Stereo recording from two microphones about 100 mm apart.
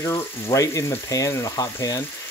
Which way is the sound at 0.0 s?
30° left (ahead or behind).